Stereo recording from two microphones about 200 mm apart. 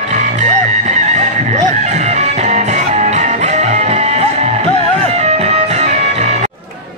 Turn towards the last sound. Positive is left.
turn(degrees=-35)  # may be behind; listen again after turning